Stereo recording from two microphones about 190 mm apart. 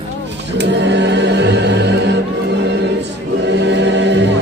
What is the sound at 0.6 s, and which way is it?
Music, 65° right (ahead or behind).